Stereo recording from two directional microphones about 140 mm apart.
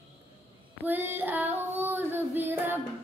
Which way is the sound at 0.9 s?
15° right (ahead or behind).